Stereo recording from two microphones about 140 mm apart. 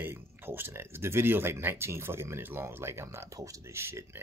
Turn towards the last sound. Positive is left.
turn(degrees=-20)  # may be behind; listen again after turning